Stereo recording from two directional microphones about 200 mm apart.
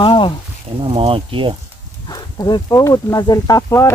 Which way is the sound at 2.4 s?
15° left (ahead or behind).